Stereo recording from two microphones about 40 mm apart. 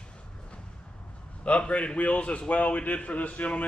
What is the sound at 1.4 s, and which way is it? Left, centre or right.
A man's voice, left.